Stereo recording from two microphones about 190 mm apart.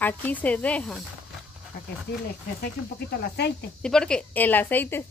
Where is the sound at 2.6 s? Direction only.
55° left (ahead or behind).